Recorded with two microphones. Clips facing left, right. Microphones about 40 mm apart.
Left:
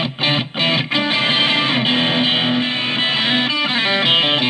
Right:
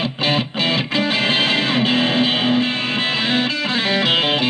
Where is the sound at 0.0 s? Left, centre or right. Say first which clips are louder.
Even; left.